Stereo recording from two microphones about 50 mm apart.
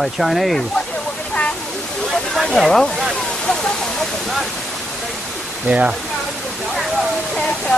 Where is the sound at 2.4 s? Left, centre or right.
Centre.